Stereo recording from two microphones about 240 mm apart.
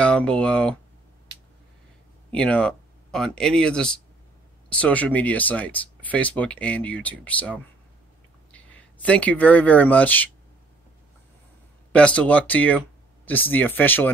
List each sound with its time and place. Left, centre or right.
0.0 s speech: centre
2.3 s speech: centre
11.9 s speech: centre